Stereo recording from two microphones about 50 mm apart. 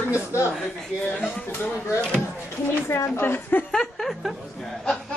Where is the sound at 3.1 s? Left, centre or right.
Left.